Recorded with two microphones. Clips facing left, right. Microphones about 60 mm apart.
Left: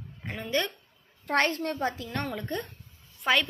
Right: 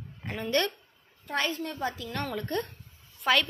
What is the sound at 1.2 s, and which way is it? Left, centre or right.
Speech, left.